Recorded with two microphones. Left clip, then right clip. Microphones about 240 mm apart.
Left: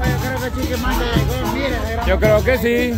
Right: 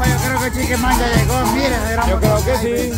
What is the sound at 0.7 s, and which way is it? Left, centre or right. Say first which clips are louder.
Speech: right 5 dB; right.